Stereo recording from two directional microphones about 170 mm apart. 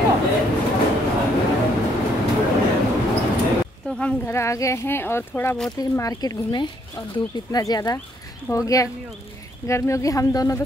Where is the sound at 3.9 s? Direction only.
5° left (ahead or behind).